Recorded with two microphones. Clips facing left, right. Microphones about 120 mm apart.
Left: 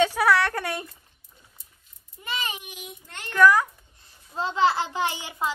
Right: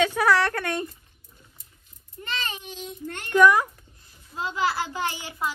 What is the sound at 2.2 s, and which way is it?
Speech, 10° left (ahead or behind).